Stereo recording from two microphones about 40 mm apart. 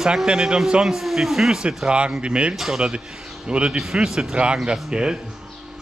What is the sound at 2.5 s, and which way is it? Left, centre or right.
Speech, centre.